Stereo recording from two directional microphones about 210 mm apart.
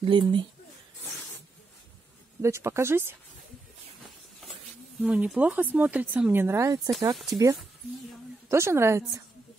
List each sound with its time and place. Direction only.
0.0 s speech: 25° right (ahead or behind)
2.4 s speech: 15° right (ahead or behind)
5.0 s speech: 5° right (ahead or behind)